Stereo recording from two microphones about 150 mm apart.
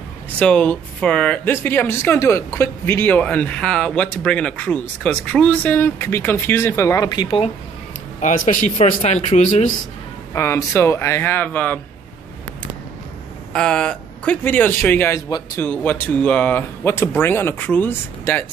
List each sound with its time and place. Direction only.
0.4 s speech: 10° left (ahead or behind); by 7.4 s 35° left (ahead or behind)
8.2 s a man's voice: 55° left (ahead or behind)
10.3 s speech: 20° left (ahead or behind)
13.5 s speech: 5° left (ahead or behind); by 15.6 s 20° left (ahead or behind)
15.6 s speech: 10° left (ahead or behind)